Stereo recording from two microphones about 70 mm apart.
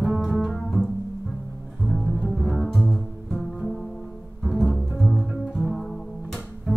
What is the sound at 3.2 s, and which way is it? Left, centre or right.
Music, centre.